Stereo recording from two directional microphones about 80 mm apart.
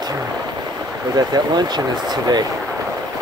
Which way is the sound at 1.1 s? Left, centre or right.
Right.